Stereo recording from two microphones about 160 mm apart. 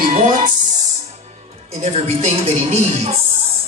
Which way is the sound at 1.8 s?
40° right (ahead or behind).